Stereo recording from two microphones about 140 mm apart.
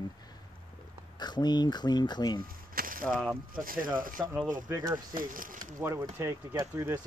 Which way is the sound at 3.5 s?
85° right.